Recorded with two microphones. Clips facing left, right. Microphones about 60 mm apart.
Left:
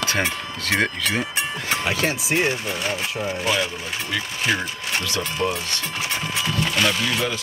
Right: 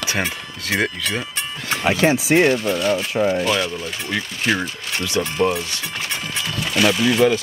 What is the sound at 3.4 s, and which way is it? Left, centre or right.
Speech, centre.